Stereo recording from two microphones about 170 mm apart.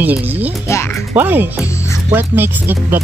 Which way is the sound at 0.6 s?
15° left (ahead or behind).